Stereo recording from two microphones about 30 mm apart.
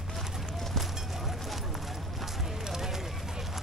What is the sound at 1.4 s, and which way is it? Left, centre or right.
Run, centre.